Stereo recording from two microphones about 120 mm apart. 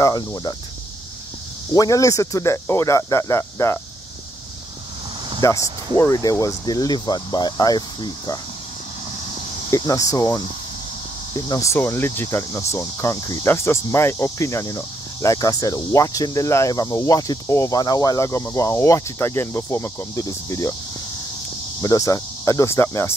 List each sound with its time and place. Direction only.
0.0 s speech: 30° left (ahead or behind)
1.7 s cricket: 30° left (ahead or behind)
5.4 s cricket: 25° left (ahead or behind)
5.9 s speech: 25° left (ahead or behind)
9.7 s cricket: 30° left (ahead or behind)
11.3 s speech: 30° left (ahead or behind)
11.7 s cricket: 20° left (ahead or behind)
21.8 s cricket: 30° left (ahead or behind)